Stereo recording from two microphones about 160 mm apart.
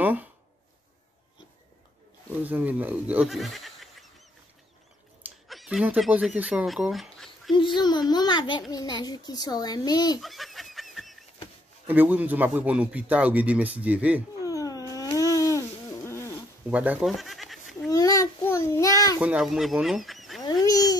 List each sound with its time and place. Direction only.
0.0 s speech: 10° right (ahead or behind)
2.3 s speech: 10° right (ahead or behind)
5.5 s speech: 5° right (ahead or behind)
7.5 s a child's voice: 30° left (ahead or behind)
10.2 s fowl: centre (ahead or behind)
11.9 s speech: 10° right (ahead or behind)
14.4 s a sound: 20° left (ahead or behind)
16.6 s speech: 10° right (ahead or behind)
17.1 s goat: centre (ahead or behind)
17.8 s child singing: 20° left (ahead or behind)
19.1 s speech: 5° right (ahead or behind)
20.4 s a sound: 25° left (ahead or behind)